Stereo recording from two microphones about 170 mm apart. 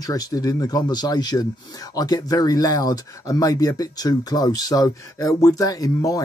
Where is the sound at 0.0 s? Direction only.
20° left (ahead or behind).